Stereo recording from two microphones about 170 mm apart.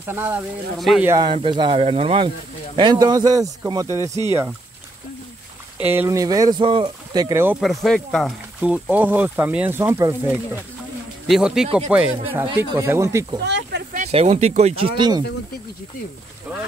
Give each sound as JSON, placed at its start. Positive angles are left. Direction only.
{"t": 0.0, "sound": "speech", "side_deg": -10}
{"t": 0.7, "sound": "speech", "side_deg": 0}
{"t": 1.0, "sound": "speech", "side_deg": -20}
{"t": 5.8, "sound": "speech", "side_deg": -10}
{"t": 7.6, "sound": "speech", "side_deg": 0}
{"t": 11.2, "sound": "speech", "side_deg": 0}
{"t": 12.5, "sound": "speech", "side_deg": -15}
{"t": 13.4, "sound": "speech", "side_deg": -85}
{"t": 13.9, "sound": "speech", "side_deg": -40}
{"t": 15.0, "sound": "speech", "side_deg": -25}